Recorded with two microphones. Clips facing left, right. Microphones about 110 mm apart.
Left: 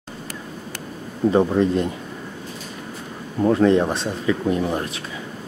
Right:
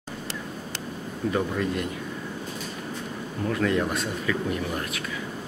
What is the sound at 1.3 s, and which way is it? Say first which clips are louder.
Speech: left 9 dB; 30° left (ahead or behind).